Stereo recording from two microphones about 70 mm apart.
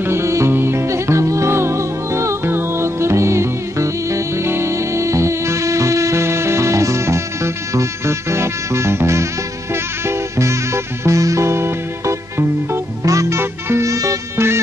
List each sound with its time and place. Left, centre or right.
0.0 s music: right
13.0 s music: right
13.4 s music: right
14.3 s music: right